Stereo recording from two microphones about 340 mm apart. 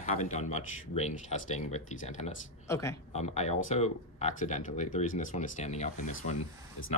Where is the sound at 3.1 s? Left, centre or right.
Centre.